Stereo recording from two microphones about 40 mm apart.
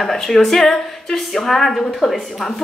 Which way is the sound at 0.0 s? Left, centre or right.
Centre.